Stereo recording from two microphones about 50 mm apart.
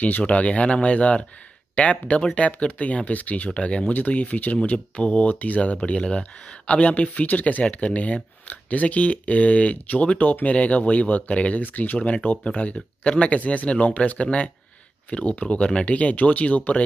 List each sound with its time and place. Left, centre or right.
0.2 s speech: left
4.7 s speech: centre
5.3 s speech: left